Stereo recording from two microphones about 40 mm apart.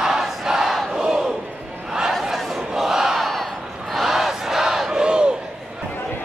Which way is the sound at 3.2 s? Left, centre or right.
Centre.